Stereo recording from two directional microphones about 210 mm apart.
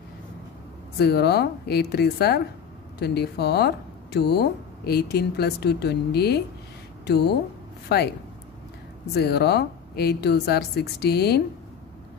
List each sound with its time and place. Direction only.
0.9 s speech: 50° left (ahead or behind)
9.1 s speech: 50° left (ahead or behind)